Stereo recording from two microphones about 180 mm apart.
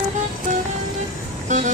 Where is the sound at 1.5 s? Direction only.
45° right (ahead or behind).